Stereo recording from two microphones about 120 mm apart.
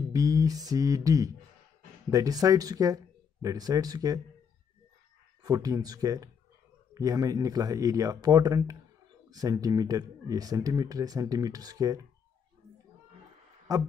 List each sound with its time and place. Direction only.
0.1 s a sound: 30° right (ahead or behind)
2.0 s speech: 30° right (ahead or behind)
5.4 s speech: 30° right (ahead or behind)